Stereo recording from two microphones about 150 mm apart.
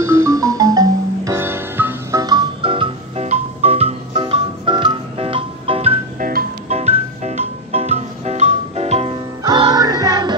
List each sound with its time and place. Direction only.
0.0 s music: 20° right (ahead or behind); by 5.9 s 40° right (ahead or behind)
6.1 s music: 65° right (ahead or behind)
6.7 s music: 45° right (ahead or behind); by 10.3 s 25° right (ahead or behind)